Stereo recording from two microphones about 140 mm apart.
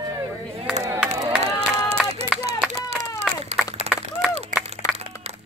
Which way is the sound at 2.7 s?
50° right (ahead or behind).